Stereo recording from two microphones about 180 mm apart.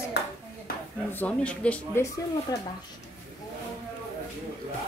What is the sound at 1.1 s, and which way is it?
Speech, 10° left (ahead or behind).